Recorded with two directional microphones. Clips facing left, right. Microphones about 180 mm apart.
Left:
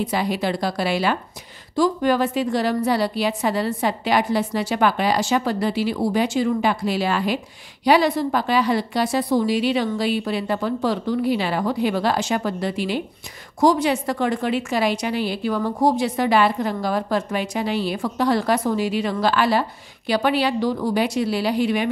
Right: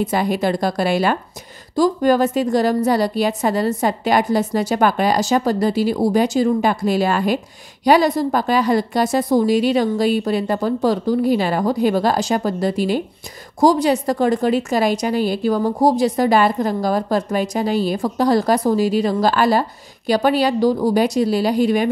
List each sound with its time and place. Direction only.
0.0 s a woman's voice: 45° right (ahead or behind)